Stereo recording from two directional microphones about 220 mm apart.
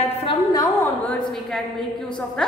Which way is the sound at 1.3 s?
Centre (ahead or behind).